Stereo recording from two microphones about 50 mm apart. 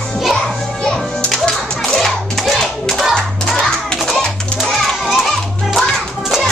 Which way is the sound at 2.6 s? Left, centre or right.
Centre.